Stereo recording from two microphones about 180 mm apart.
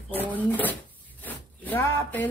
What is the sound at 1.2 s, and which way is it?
Zipper, 10° left (ahead or behind).